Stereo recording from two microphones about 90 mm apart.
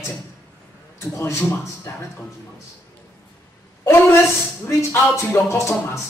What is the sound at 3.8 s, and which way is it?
Speech, 30° left (ahead or behind).